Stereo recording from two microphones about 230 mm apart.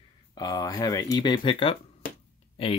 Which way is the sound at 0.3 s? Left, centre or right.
Centre.